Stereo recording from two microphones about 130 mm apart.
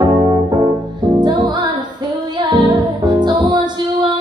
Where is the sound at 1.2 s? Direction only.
35° right (ahead or behind).